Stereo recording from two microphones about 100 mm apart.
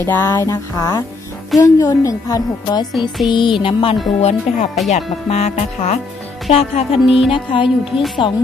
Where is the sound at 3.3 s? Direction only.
55° left (ahead or behind).